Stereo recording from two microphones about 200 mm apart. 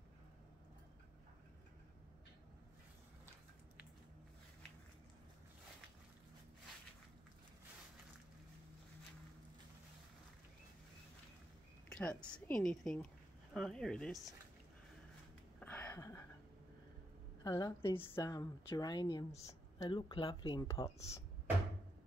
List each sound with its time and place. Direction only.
11.9 s a woman's voice: 5° left (ahead or behind)
15.6 s a sound: 10° left (ahead or behind)
17.4 s a woman's voice: 15° left (ahead or behind)